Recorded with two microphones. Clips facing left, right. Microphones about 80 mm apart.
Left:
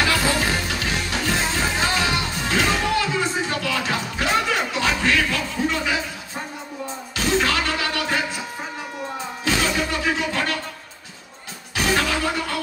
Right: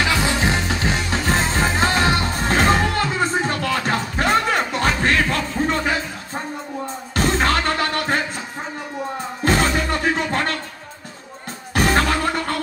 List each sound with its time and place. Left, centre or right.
0.0 s music: right
7.2 s music: right
9.4 s music: right
11.7 s music: right